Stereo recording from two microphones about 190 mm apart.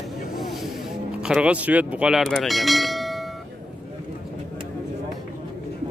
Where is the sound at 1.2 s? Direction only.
5° right (ahead or behind).